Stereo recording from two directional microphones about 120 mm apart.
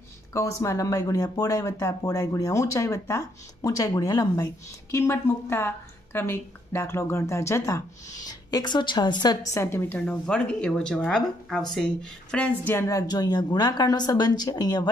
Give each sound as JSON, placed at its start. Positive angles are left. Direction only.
{"t": 0.3, "sound": "a woman's voice", "side_deg": 25}